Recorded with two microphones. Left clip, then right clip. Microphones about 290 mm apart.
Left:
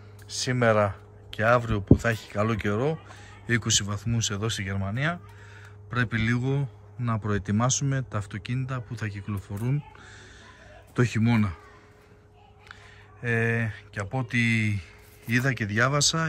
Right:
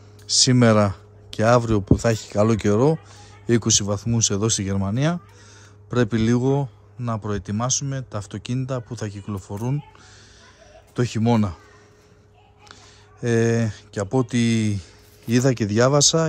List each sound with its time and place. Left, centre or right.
0.3 s a man's voice: right
11.0 s a man's voice: centre
13.2 s a man's voice: centre